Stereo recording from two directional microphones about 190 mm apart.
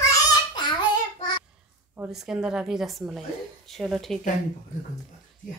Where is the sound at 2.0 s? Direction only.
5° right (ahead or behind).